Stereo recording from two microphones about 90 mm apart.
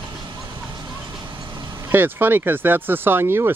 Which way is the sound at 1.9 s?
25° right (ahead or behind).